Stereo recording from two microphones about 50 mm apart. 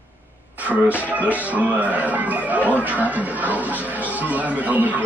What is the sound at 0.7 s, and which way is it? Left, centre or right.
Speech, right.